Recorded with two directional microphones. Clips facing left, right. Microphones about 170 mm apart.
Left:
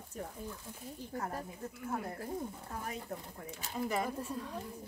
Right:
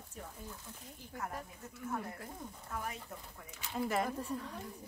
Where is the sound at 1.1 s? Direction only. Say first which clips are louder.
Left 3 dB; 35° left (ahead or behind).